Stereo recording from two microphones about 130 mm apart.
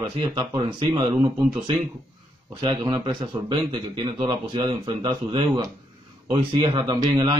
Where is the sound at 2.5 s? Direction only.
35° right (ahead or behind).